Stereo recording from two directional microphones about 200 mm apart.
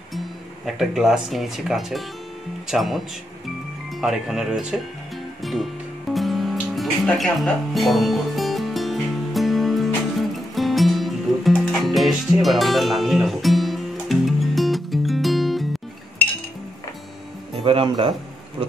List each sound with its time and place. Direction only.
0.7 s speech: centre (ahead or behind)
4.0 s speech: centre (ahead or behind)
5.4 s music: centre (ahead or behind)
17.6 s speech: 25° right (ahead or behind)